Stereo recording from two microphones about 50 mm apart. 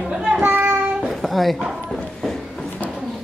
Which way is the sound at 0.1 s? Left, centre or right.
Centre.